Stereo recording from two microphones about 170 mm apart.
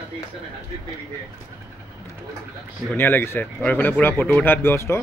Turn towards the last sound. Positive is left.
turn(degrees=15)  # may be behind; listen again after turning